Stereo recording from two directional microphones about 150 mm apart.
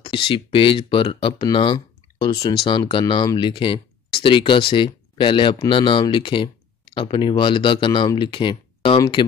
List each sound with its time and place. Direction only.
0.0 s speech: 35° left (ahead or behind)